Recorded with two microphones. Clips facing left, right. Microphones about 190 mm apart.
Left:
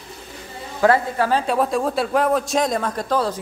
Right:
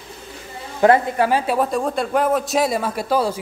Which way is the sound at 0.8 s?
15° right (ahead or behind).